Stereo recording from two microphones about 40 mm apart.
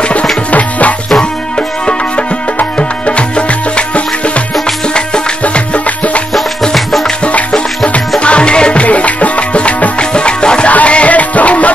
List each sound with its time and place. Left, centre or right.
0.5 s music: left
2.8 s music: left
5.4 s music: left
6.7 s music: centre
8.2 s music: left
8.8 s music: left
10.7 s music: left